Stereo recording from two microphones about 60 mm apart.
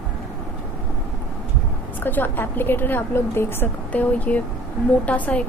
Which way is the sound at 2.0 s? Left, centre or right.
Left.